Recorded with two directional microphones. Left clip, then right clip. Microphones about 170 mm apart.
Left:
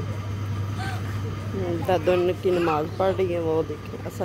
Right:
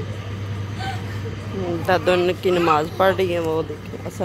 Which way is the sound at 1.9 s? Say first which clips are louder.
Right 4 dB; 15° left (ahead or behind).